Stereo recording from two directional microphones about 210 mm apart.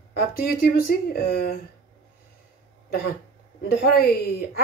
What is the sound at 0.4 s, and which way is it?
Speech, 45° left (ahead or behind).